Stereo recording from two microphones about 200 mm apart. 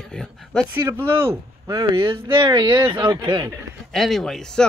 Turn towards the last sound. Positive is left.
turn(degrees=0)  # may be behind; listen again after turning